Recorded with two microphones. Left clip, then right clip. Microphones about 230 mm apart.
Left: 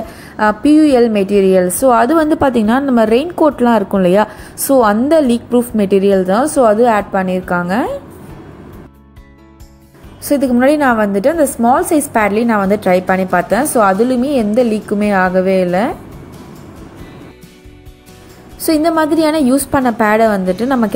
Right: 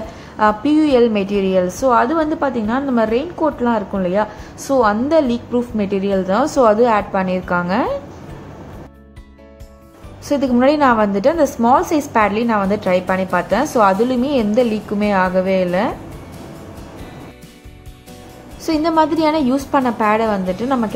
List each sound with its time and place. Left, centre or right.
0.4 s a woman's voice: centre
10.2 s a woman's voice: centre
18.7 s a woman's voice: centre